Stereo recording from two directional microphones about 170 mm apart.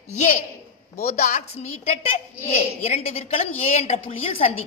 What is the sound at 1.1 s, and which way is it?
Speech, 45° left (ahead or behind).